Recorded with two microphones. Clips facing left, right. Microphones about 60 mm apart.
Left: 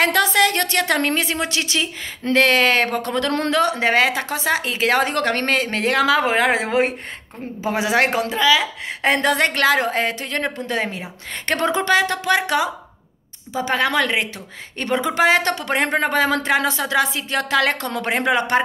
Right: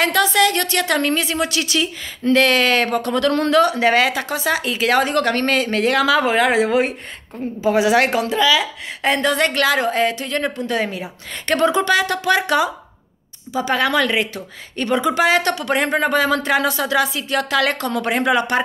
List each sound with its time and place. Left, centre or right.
0.0 s a woman's voice: left
12.3 s speech: left
13.5 s a woman's voice: left